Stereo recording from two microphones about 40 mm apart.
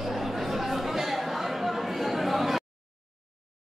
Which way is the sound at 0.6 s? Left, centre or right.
Centre.